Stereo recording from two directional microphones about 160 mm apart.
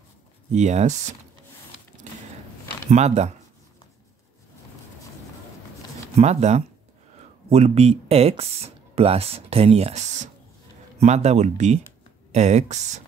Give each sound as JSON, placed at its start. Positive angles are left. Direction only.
{"t": 0.5, "sound": "speech", "side_deg": -45}
{"t": 2.9, "sound": "speech", "side_deg": -45}
{"t": 6.1, "sound": "speech", "side_deg": -45}